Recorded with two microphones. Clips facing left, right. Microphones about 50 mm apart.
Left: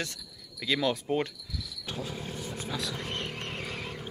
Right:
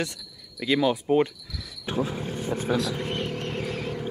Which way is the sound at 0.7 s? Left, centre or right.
Centre.